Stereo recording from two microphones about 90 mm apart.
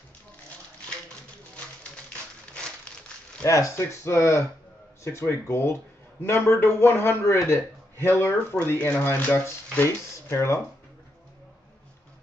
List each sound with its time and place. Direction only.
3.4 s speech: 30° left (ahead or behind)